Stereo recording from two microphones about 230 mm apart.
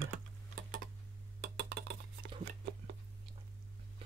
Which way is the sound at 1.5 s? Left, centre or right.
Right.